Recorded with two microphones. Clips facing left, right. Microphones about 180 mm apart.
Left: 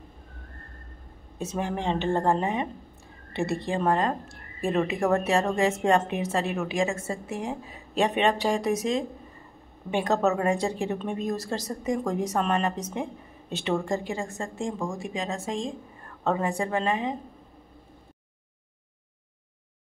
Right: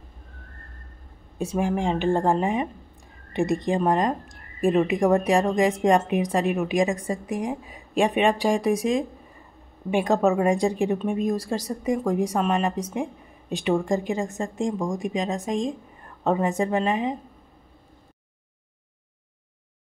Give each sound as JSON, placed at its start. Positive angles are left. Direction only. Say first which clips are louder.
{"t": 1.4, "sound": "speech", "louder": "right 5 dB", "side_deg": -15}